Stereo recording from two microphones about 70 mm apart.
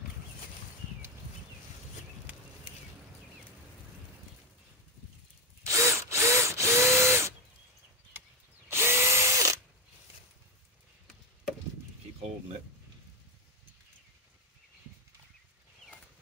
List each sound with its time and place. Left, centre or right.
5.6 s drill: right
8.6 s drill: right